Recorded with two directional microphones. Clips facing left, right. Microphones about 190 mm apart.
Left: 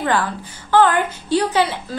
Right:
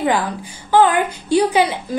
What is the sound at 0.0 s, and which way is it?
A woman's voice, 15° right (ahead or behind).